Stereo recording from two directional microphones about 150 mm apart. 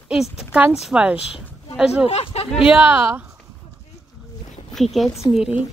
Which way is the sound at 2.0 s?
45° left (ahead or behind).